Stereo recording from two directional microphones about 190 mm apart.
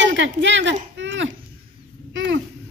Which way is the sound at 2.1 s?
75° right (ahead or behind).